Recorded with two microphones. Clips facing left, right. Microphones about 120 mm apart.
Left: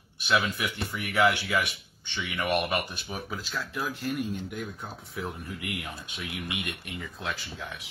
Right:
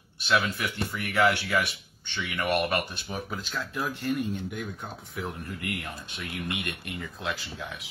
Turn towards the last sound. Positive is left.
turn(degrees=0)  # may be behind; listen again after turning